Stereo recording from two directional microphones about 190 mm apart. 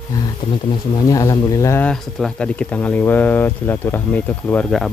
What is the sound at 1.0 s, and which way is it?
Speech, 15° left (ahead or behind).